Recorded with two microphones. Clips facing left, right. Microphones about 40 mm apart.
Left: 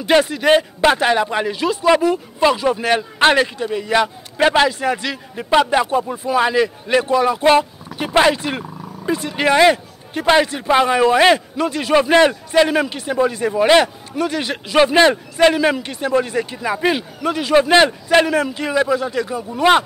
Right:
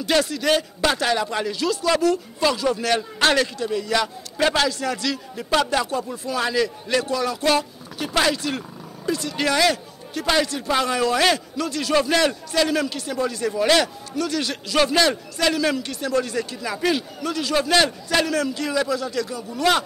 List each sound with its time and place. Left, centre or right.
0.0 s speech: left